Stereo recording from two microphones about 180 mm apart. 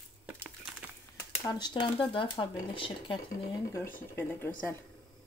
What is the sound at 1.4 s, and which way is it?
Speech, 25° left (ahead or behind).